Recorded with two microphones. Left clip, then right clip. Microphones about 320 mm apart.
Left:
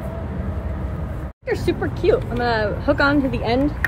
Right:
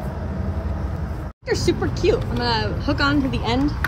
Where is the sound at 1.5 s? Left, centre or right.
Centre.